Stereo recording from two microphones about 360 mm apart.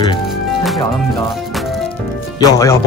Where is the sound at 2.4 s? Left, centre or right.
Centre.